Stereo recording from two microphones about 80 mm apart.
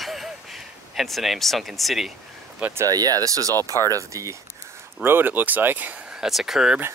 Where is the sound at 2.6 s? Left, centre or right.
Centre.